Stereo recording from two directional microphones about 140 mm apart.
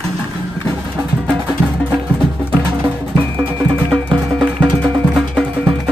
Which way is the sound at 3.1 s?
35° right (ahead or behind).